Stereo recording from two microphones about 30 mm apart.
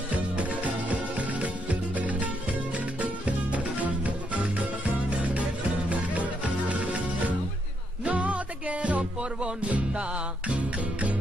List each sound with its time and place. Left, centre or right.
0.4 s music: right
6.7 s music: right
9.4 s music: right